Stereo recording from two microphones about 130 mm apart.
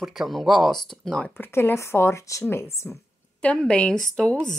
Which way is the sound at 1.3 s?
20° left (ahead or behind).